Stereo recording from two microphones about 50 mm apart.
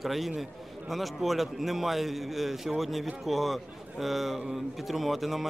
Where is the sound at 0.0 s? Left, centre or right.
Centre.